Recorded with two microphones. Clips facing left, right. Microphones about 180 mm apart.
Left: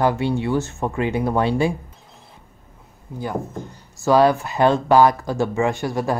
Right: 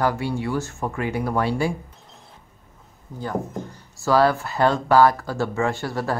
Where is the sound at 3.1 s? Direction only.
10° left (ahead or behind).